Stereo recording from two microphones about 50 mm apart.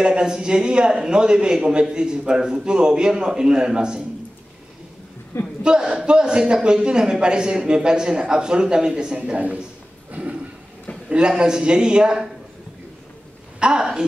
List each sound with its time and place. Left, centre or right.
0.0 s a man's voice: centre
5.6 s a man's voice: centre
10.2 s a sound: right
11.1 s a man's voice: centre
13.6 s a woman's voice: centre